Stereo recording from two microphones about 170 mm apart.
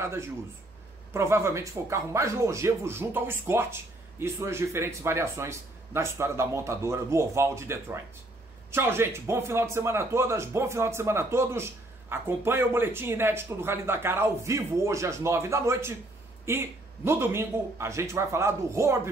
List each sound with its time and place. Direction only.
0.0 s speech: 15° right (ahead or behind)